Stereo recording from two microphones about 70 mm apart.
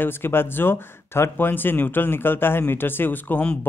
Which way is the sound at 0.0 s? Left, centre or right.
Left.